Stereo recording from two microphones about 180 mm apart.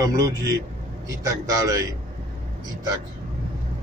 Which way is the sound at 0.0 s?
20° right (ahead or behind).